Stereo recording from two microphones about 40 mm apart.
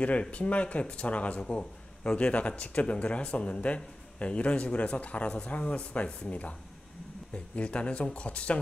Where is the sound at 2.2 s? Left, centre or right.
Left.